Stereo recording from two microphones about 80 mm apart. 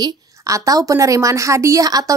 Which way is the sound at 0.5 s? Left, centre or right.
Right.